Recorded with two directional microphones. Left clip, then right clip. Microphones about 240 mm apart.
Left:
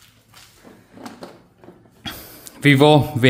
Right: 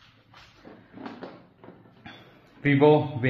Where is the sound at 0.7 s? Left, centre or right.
Left.